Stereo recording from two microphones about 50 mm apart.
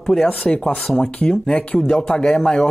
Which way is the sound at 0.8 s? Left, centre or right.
Centre.